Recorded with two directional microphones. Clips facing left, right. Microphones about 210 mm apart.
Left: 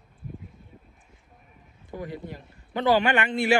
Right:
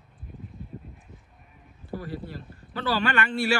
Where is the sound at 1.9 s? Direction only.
15° left (ahead or behind).